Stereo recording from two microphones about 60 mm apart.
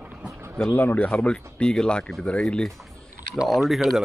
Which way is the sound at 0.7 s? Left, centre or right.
Left.